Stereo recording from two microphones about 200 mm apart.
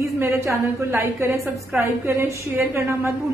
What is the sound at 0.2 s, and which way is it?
A woman's voice, 15° right (ahead or behind).